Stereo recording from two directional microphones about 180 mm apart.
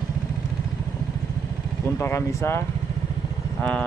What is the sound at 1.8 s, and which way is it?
Speech, 15° left (ahead or behind).